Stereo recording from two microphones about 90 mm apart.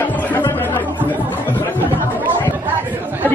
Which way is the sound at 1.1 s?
20° left (ahead or behind).